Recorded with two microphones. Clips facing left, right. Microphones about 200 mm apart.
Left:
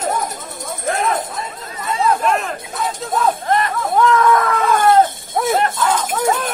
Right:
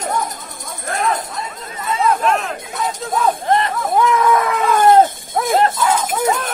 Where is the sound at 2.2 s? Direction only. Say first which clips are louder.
Even; centre (ahead or behind).